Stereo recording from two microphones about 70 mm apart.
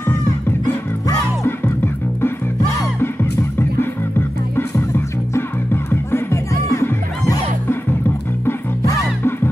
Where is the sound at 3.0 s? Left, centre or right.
Left.